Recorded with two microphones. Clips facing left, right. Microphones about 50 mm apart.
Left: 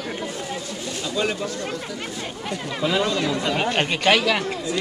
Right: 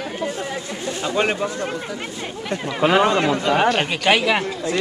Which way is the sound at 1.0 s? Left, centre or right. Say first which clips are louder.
Right 4 dB; right.